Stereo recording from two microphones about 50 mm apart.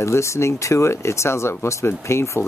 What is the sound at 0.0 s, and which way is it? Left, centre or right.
Speech, left.